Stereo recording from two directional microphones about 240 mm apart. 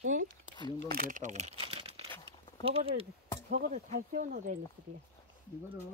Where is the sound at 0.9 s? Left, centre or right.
Right.